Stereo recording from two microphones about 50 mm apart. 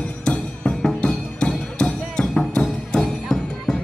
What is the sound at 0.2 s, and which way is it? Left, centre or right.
Music, left.